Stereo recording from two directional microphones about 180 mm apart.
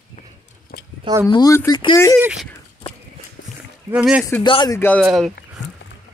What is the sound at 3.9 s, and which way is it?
Speech, 5° right (ahead or behind).